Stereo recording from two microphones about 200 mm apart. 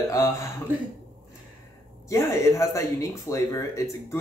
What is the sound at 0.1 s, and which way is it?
Speech, 15° left (ahead or behind).